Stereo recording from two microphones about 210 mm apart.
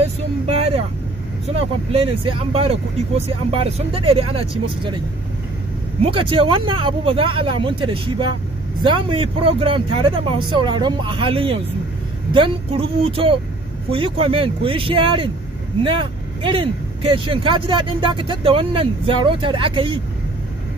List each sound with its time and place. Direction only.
0.0 s vehicle: 30° right (ahead or behind)
1.5 s speech: 30° right (ahead or behind)
6.0 s speech: 25° right (ahead or behind)